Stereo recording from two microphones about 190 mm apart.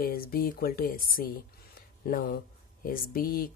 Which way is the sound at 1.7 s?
50° left (ahead or behind).